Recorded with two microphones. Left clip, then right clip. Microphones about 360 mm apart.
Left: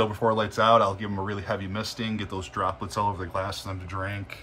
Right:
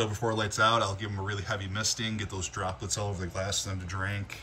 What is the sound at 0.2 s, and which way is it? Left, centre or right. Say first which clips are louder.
Speech: left 2 dB; centre.